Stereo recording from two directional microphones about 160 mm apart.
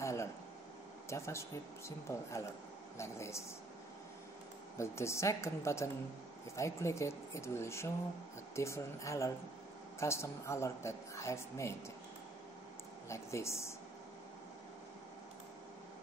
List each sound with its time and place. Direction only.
0.0 s air conditioning: 20° left (ahead or behind)
1.1 s a woman's voice: 20° left (ahead or behind)
4.7 s a woman's voice: 15° left (ahead or behind)
13.1 s a woman's voice: 15° left (ahead or behind)